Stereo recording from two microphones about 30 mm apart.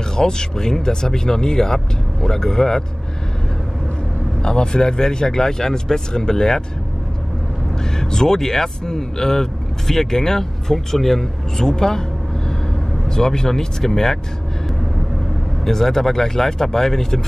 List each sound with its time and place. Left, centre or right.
0.1 s speech: left
4.4 s speech: left
7.8 s speech: centre
13.1 s speech: left
15.6 s speech: centre